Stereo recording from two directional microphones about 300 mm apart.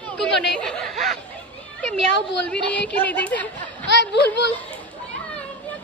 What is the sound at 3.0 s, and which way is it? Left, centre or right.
Speech, centre.